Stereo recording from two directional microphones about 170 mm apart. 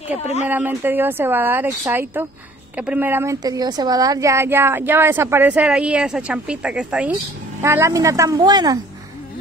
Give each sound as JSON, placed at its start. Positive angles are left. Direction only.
{"t": 0.1, "sound": "a woman's voice", "side_deg": 40}
{"t": 0.5, "sound": "speech", "side_deg": -10}